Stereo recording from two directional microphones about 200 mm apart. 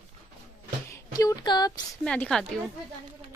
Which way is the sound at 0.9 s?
20° left (ahead or behind).